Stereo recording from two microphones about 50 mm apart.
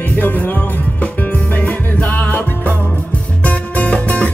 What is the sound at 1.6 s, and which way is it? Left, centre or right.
Music, left.